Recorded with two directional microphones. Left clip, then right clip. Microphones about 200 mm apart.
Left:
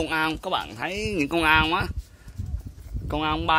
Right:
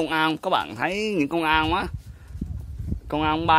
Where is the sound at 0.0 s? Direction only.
20° right (ahead or behind).